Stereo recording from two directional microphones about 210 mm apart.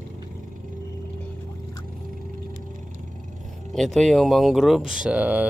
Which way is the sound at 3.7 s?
Centre (ahead or behind).